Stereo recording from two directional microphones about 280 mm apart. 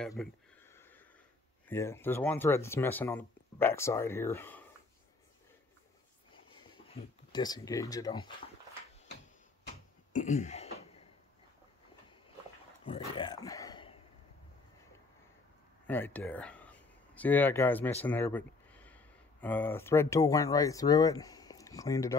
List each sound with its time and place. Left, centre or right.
0.0 s a sound: centre
1.7 s speech: centre
6.9 s speech: centre
10.1 s throat clearing: left
12.8 s speech: centre
15.9 s speech: centre